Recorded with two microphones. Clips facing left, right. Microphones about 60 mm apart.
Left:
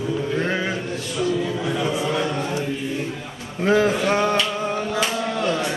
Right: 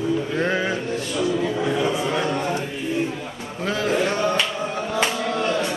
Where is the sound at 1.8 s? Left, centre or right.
Right.